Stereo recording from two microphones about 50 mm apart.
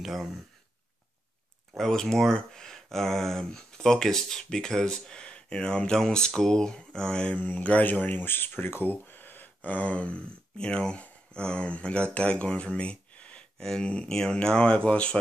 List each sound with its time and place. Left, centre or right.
1.8 s speech: centre
13.6 s speech: centre